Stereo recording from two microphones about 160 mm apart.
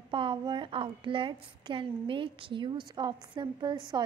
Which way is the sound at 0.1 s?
30° right (ahead or behind).